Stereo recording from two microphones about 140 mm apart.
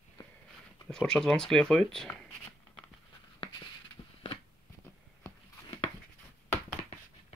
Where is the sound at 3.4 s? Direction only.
40° left (ahead or behind).